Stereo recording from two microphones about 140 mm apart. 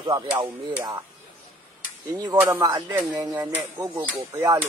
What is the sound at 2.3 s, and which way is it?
Speech, 20° right (ahead or behind).